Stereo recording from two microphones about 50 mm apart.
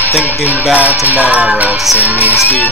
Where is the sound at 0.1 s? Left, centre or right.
Left.